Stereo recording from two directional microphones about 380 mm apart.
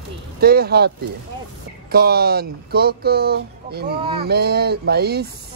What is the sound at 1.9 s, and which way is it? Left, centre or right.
Speech, right.